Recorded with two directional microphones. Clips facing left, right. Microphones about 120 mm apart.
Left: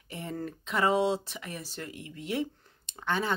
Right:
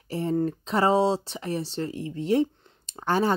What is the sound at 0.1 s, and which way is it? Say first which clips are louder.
Speech: right 11 dB; 30° right (ahead or behind).